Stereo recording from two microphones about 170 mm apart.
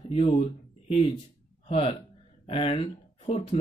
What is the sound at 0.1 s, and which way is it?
Speech, 35° left (ahead or behind).